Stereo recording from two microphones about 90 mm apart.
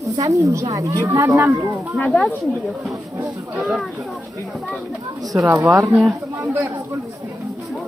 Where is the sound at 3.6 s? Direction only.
5° right (ahead or behind).